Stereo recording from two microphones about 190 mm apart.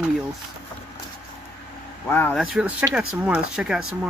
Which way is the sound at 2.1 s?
10° left (ahead or behind).